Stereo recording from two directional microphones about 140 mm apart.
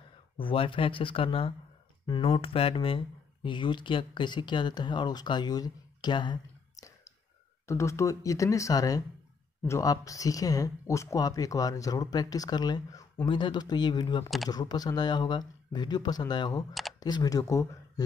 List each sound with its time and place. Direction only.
0.4 s speech: 40° left (ahead or behind)